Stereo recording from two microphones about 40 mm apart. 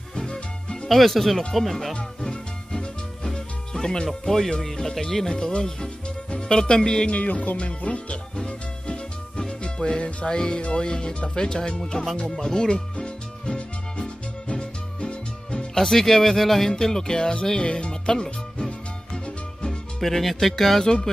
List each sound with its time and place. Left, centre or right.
0.1 s music: centre
0.8 s speech: centre
2.2 s music: centre
6.3 s speech: centre
7.1 s speech: left
7.5 s music: left; by 18.7 s centre
20.0 s speech: centre